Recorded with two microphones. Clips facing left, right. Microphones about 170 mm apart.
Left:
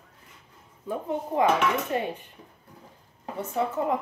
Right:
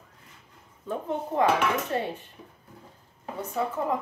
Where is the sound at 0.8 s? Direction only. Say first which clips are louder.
Left 1 dB; 10° left (ahead or behind).